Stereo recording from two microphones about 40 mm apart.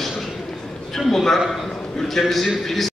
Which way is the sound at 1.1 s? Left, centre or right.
Centre.